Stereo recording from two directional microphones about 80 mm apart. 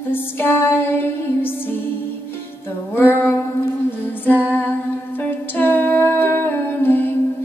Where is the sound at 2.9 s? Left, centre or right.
Left.